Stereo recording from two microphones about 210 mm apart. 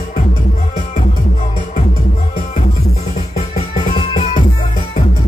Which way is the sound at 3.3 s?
30° left (ahead or behind).